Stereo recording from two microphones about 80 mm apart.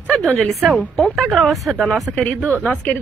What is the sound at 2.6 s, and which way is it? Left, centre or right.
Speech, centre.